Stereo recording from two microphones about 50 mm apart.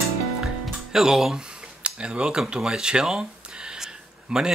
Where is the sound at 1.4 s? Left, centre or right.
Centre.